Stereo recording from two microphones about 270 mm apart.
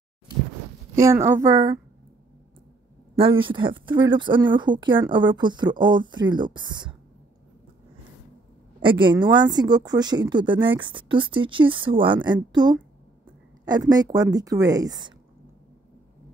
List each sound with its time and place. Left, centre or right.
0.9 s speech: centre
3.2 s speech: centre
8.8 s speech: centre